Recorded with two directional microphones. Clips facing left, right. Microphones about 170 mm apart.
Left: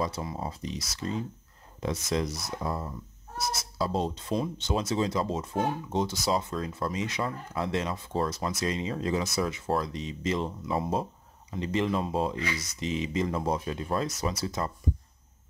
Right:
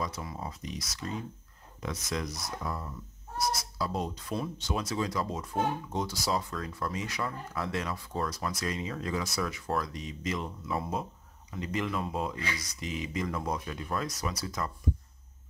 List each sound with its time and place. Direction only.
0.0 s speech: 25° left (ahead or behind)